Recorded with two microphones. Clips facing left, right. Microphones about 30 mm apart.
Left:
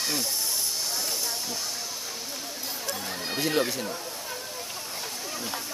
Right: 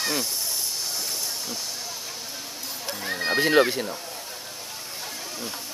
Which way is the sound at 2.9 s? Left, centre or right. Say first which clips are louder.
Right 4 dB; right.